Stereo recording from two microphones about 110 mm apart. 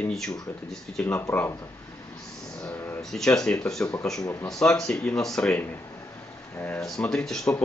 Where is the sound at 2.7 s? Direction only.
20° left (ahead or behind).